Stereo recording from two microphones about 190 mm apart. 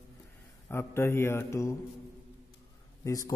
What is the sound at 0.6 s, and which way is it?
Speech, 10° left (ahead or behind).